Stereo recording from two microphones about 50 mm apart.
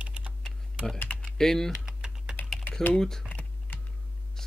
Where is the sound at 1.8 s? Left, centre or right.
Centre.